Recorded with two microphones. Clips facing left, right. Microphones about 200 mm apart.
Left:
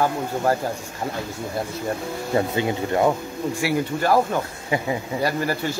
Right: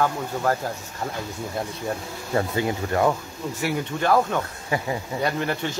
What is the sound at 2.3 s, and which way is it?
Speech, 20° left (ahead or behind).